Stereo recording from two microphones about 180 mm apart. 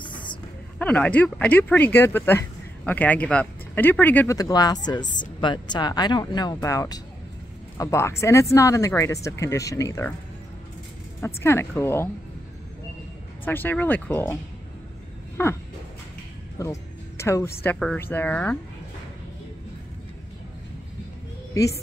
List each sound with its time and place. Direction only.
0.0 s a sound: 25° left (ahead or behind)
0.7 s speech: 5° left (ahead or behind)
11.1 s speech: 15° left (ahead or behind)
13.5 s speech: 10° left (ahead or behind)
16.6 s speech: 15° left (ahead or behind)